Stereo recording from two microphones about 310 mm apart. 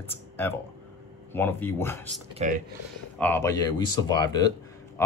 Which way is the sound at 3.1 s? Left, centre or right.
Centre.